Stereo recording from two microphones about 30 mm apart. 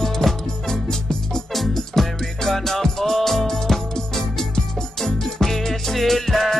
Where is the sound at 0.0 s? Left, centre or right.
Centre.